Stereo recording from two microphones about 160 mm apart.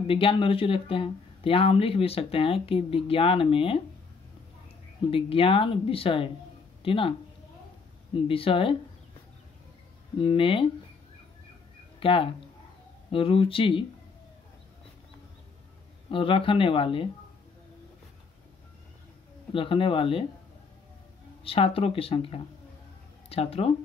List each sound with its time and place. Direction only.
0.0 s speech: 35° left (ahead or behind)
5.1 s speech: 35° left (ahead or behind)
8.3 s speech: 35° left (ahead or behind)
10.1 s speech: 30° left (ahead or behind)
12.0 s speech: 35° left (ahead or behind)
16.1 s speech: 35° left (ahead or behind)
19.5 s speech: 35° left (ahead or behind)
21.5 s speech: 35° left (ahead or behind)